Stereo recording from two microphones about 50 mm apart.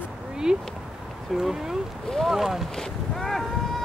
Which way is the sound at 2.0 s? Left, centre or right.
Centre.